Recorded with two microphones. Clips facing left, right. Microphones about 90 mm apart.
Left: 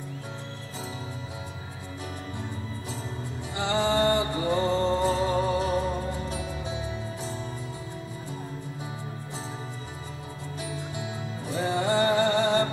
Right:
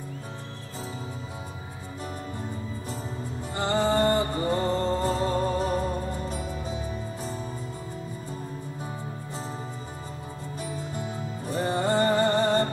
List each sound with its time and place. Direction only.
3.5 s music: 40° right (ahead or behind)
10.6 s music: 45° right (ahead or behind)